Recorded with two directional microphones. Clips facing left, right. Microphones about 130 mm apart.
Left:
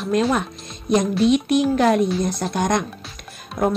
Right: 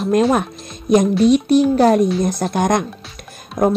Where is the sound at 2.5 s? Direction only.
50° right (ahead or behind).